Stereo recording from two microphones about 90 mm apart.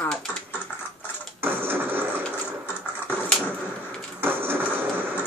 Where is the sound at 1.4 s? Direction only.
25° right (ahead or behind).